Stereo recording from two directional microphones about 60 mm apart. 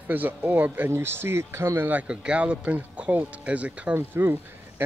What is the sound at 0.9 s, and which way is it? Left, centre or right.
Speech, right.